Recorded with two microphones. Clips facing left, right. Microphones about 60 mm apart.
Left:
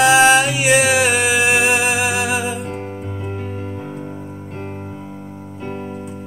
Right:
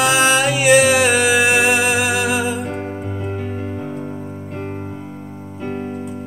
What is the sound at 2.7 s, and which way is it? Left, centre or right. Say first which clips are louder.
Music: right 2 dB; right.